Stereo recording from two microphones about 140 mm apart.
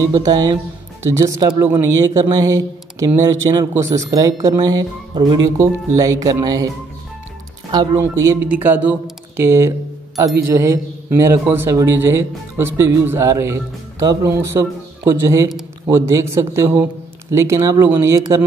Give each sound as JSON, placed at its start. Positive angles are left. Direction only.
{"t": 0.0, "sound": "speech", "side_deg": -30}
{"t": 7.7, "sound": "speech", "side_deg": -35}
{"t": 8.0, "sound": "speech", "side_deg": -20}